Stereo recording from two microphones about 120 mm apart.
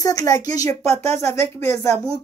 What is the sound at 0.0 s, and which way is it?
Speech, 30° left (ahead or behind).